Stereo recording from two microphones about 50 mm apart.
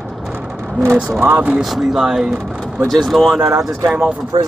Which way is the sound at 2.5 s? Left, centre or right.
Centre.